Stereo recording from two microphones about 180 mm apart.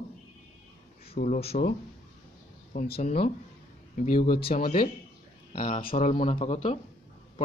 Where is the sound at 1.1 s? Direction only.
35° left (ahead or behind).